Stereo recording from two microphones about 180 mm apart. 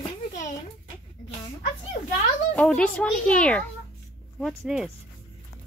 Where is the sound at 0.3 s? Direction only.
45° left (ahead or behind).